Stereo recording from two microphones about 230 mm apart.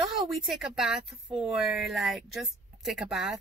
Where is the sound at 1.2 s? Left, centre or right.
Right.